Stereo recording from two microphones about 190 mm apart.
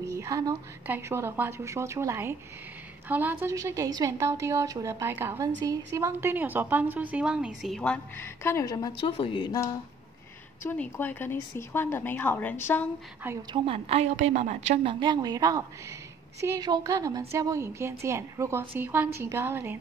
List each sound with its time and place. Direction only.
0.1 s a woman's voice: 15° right (ahead or behind); by 9.8 s 20° left (ahead or behind)
10.6 s speech: 10° left (ahead or behind)
13.5 s a woman's voice: 30° right (ahead or behind); by 19.8 s 10° right (ahead or behind)